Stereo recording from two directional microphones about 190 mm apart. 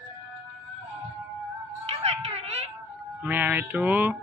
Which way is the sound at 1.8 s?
35° right (ahead or behind).